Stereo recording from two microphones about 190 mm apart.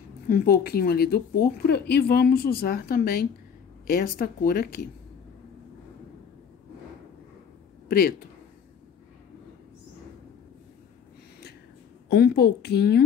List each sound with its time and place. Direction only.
0.3 s speech: 55° left (ahead or behind)
12.1 s a woman's voice: 60° left (ahead or behind)